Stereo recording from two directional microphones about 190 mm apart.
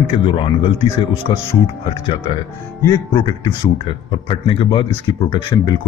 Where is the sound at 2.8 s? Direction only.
20° left (ahead or behind).